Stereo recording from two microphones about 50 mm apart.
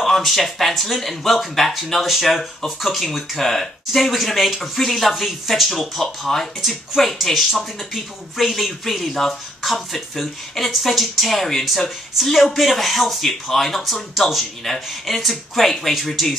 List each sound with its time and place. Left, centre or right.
0.0 s speech: centre